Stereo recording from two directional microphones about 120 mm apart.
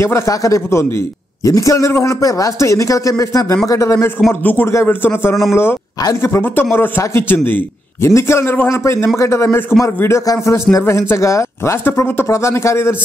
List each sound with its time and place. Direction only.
0.0 s a man's voice: 25° left (ahead or behind)